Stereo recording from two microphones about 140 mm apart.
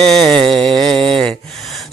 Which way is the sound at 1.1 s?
5° left (ahead or behind).